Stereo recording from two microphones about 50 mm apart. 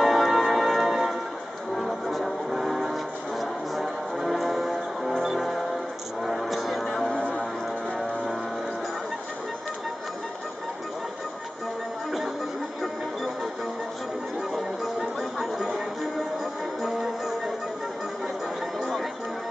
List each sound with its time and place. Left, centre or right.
0.0 s a sound: centre
1.8 s music: centre
7.1 s music: centre
14.5 s a sound: centre
16.8 s music: centre
18.8 s chatter: centre